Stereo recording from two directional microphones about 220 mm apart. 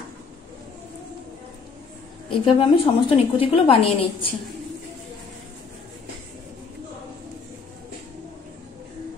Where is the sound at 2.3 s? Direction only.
25° left (ahead or behind).